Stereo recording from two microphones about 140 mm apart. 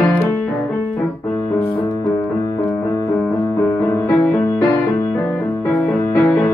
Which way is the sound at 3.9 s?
15° left (ahead or behind).